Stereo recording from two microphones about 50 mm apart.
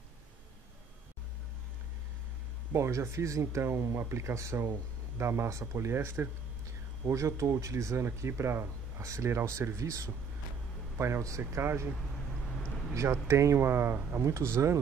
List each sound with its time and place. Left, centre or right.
2.7 s speech: right
3.7 s speech: right
5.1 s speech: right
7.1 s speech: right
9.0 s speech: right
11.0 s speech: right
11.6 s speech: right
12.9 s speech: right
13.3 s speech: right
13.6 s speech: right
14.2 s speech: right